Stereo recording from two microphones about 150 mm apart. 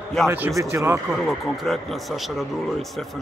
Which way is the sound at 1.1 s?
Centre (ahead or behind).